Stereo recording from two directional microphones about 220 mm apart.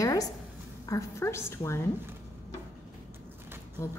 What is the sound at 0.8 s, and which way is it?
A woman's voice, 15° left (ahead or behind).